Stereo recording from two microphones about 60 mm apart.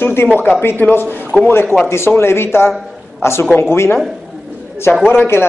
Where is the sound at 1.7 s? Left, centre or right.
Left.